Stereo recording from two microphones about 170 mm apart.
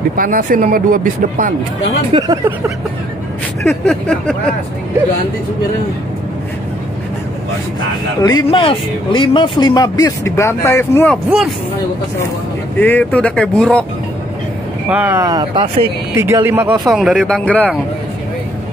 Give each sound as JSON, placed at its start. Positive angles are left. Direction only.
{"t": 0.1, "sound": "speech", "side_deg": -55}
{"t": 2.1, "sound": "speech", "side_deg": -25}
{"t": 3.6, "sound": "speech", "side_deg": 5}
{"t": 8.2, "sound": "speech", "side_deg": 20}
{"t": 12.7, "sound": "speech", "side_deg": 10}
{"t": 14.9, "sound": "speech", "side_deg": -10}
{"t": 15.2, "sound": "speech", "side_deg": -25}
{"t": 16.2, "sound": "speech", "side_deg": -15}
{"t": 16.9, "sound": "speech", "side_deg": 0}